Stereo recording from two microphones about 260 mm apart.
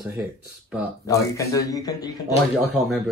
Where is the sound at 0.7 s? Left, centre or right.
Centre.